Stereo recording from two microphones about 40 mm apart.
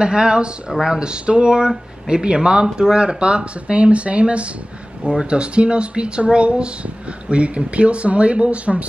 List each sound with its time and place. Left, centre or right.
0.0 s speech: right